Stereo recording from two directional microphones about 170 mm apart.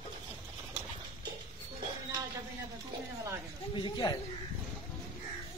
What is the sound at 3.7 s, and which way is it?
Speech, 25° left (ahead or behind).